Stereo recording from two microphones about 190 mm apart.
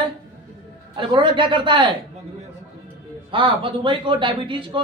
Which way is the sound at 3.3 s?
25° right (ahead or behind).